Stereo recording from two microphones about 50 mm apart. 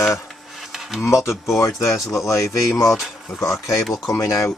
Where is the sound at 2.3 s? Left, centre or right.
Left.